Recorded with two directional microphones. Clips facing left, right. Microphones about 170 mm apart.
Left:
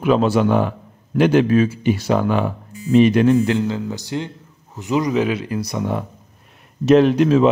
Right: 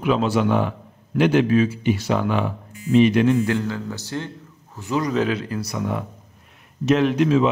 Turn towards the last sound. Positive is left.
turn(degrees=40)  # may be behind; listen again after turning